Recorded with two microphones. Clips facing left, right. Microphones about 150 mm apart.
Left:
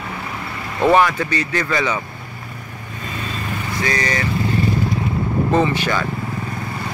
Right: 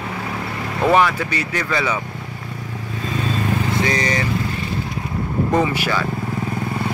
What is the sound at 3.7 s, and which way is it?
Speech, 25° right (ahead or behind).